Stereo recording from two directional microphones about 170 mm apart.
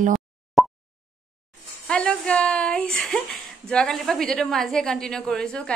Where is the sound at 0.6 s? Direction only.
Centre (ahead or behind).